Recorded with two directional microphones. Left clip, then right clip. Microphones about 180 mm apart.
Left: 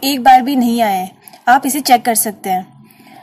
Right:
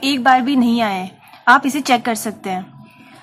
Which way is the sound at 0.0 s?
15° left (ahead or behind).